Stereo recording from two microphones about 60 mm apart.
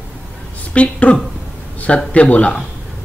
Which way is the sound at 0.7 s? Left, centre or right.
Left.